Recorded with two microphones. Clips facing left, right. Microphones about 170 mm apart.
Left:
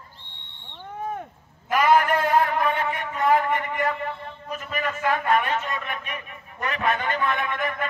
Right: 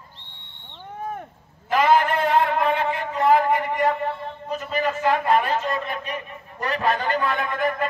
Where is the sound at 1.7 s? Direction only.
30° right (ahead or behind).